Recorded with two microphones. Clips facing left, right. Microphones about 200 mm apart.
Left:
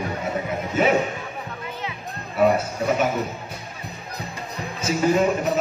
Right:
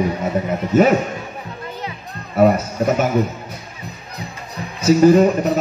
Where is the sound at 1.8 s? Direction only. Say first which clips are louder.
Right 1 dB; 40° right (ahead or behind).